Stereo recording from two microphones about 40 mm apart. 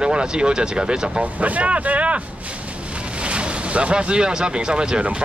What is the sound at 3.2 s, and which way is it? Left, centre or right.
Speech, right.